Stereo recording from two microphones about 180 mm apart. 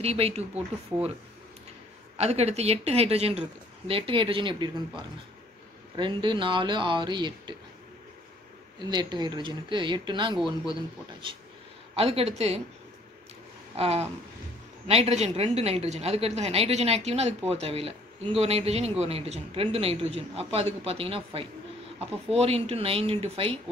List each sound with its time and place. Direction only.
0.0 s a woman's voice: 35° right (ahead or behind)
2.1 s a woman's voice: 35° right (ahead or behind)
8.7 s a woman's voice: 25° right (ahead or behind)
13.7 s a woman's voice: 35° right (ahead or behind)